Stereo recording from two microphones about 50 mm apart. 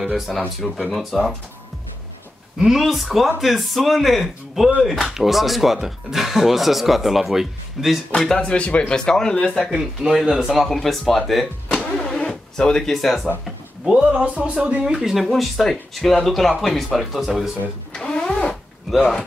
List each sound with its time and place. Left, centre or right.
0.0 s speech: centre
2.6 s speech: centre
8.4 s speech: left
9.7 s speech: centre
10.7 s speech: centre
12.1 s a sound: centre
13.9 s speech: right
15.0 s speech: centre
17.9 s vehicle: centre
18.9 s speech: centre